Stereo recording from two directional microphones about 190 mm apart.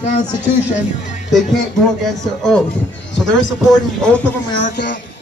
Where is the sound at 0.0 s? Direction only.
40° left (ahead or behind).